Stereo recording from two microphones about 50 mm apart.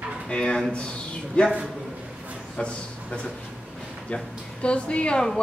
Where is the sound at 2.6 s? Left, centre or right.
Left.